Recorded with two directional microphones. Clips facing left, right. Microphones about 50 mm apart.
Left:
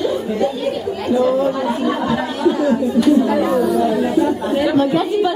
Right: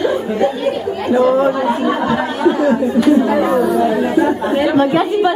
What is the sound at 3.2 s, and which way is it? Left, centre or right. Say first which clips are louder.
Chatter: right 2 dB; centre.